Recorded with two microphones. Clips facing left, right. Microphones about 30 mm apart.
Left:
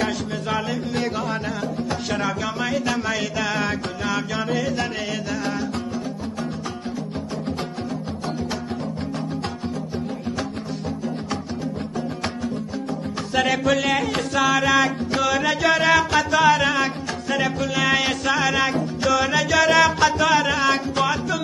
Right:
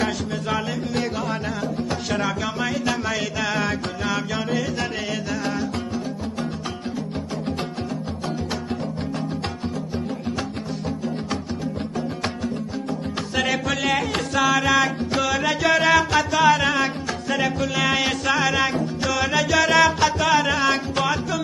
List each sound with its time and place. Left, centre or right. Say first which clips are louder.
0.0 s music: even; centre
13.3 s music: left 4 dB; centre